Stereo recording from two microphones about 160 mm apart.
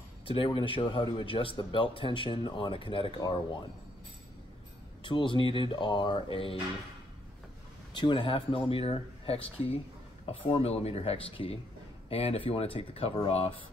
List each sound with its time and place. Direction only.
0.3 s a man's voice: 35° left (ahead or behind)
5.0 s a man's voice: 30° left (ahead or behind)
7.9 s a man's voice: 30° left (ahead or behind)